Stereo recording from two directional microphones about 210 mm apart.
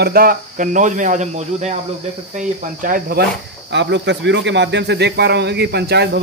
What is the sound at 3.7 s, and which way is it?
A man's voice, 60° right (ahead or behind).